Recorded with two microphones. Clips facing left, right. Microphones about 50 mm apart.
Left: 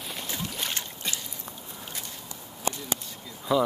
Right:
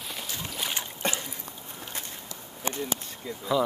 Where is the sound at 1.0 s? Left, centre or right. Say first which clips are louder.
Right 6 dB; right.